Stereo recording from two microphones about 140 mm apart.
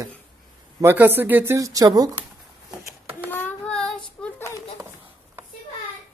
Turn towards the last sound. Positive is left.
turn(degrees=-15)  # may be behind; listen again after turning